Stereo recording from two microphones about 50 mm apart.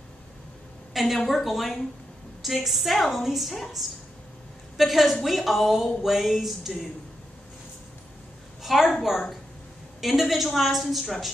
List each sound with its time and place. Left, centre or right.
0.9 s a woman's voice: centre
8.6 s a woman's voice: centre
9.9 s a woman's voice: centre